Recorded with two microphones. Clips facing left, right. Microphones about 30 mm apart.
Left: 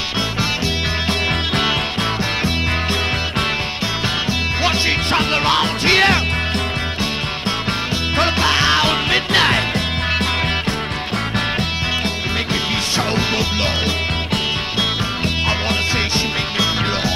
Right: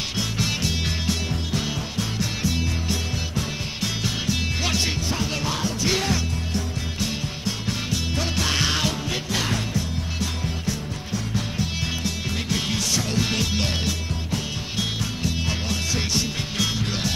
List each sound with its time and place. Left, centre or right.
1.0 s music: left
4.3 s music: left
5.1 s music: left
8.4 s music: left
8.8 s music: left
14.8 s music: left
16.5 s music: left